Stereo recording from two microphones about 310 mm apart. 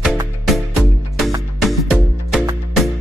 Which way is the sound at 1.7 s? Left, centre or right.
Centre.